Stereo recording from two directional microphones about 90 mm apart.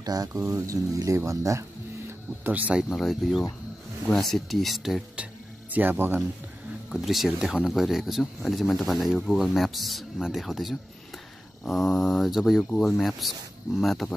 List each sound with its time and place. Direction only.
0.0 s speech: 45° right (ahead or behind)
2.4 s speech: 15° right (ahead or behind)
2.9 s speech: centre (ahead or behind)
5.1 s music: 15° right (ahead or behind)
6.9 s speech: centre (ahead or behind)